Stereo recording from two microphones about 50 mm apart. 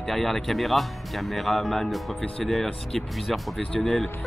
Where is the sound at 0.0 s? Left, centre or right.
Centre.